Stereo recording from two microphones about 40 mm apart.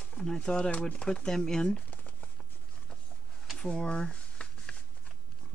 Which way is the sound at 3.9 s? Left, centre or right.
Left.